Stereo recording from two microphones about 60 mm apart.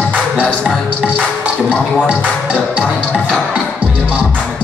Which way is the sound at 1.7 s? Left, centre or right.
Left.